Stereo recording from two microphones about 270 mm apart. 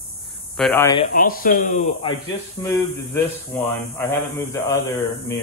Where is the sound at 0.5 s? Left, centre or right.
Centre.